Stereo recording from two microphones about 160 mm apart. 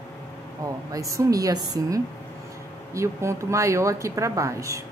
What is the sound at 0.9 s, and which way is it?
Speech, 20° right (ahead or behind).